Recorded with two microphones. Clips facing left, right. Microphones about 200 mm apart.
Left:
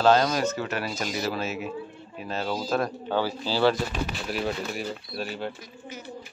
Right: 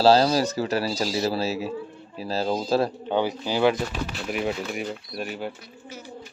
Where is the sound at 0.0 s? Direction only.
35° right (ahead or behind).